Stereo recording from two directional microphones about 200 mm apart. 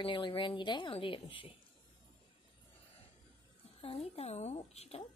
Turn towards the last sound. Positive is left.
turn(degrees=30)  # may be behind; listen again after turning